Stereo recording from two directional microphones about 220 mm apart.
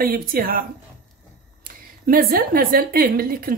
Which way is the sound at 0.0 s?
40° right (ahead or behind).